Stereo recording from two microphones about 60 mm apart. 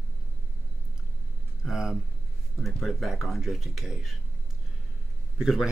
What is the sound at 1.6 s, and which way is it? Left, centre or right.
Speech, centre.